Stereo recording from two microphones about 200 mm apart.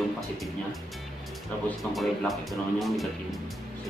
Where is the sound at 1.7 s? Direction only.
Centre (ahead or behind).